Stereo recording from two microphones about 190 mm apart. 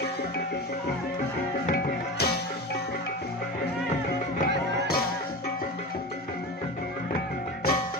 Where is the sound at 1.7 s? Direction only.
55° left (ahead or behind).